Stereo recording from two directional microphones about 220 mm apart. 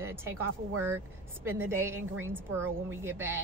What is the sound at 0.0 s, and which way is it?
A woman's voice, 10° right (ahead or behind).